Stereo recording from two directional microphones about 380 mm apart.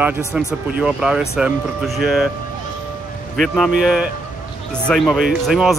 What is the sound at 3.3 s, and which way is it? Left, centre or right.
Speech, centre.